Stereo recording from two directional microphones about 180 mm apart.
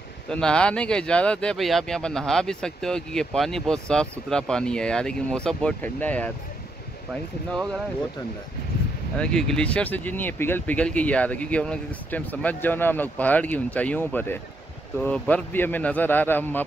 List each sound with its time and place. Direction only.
0.3 s speech: 5° left (ahead or behind)
9.1 s speech: 5° left (ahead or behind)